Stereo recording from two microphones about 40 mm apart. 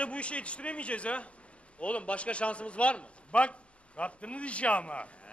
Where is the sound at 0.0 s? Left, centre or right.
Left.